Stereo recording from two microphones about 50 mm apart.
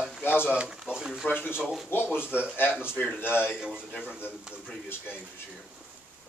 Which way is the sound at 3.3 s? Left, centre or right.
Right.